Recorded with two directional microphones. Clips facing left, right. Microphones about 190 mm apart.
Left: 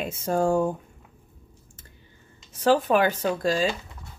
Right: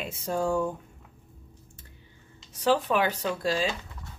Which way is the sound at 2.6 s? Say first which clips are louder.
Left 4 dB; 50° left (ahead or behind).